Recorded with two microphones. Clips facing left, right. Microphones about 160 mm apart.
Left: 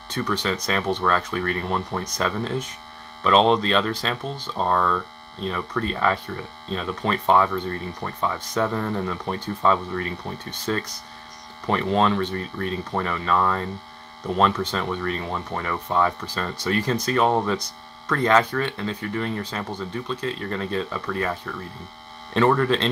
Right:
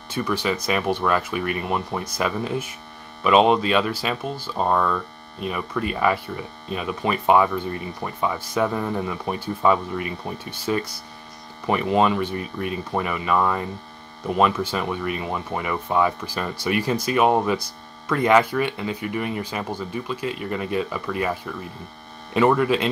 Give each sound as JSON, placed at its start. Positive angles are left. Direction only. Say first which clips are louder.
{"t": 0.1, "sound": "speech", "louder": "right 1 dB", "side_deg": -10}